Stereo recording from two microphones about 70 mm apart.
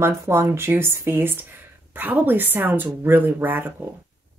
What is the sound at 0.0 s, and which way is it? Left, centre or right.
A woman's voice, right.